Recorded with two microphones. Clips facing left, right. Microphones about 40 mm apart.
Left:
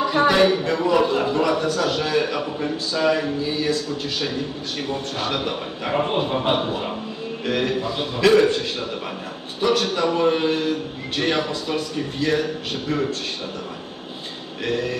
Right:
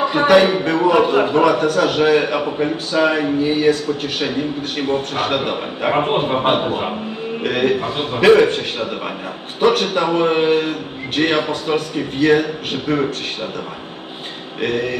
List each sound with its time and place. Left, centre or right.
0.0 s a man's voice: right
14.6 s a man's voice: right